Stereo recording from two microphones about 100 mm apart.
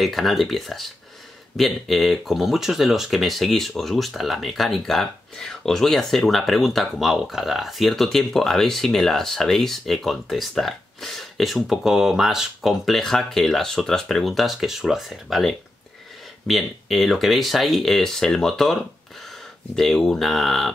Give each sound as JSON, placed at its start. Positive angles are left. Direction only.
{"t": 0.0, "sound": "speech", "side_deg": 0}